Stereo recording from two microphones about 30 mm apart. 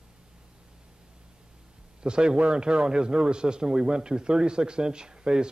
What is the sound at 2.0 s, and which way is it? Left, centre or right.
A man's voice, right.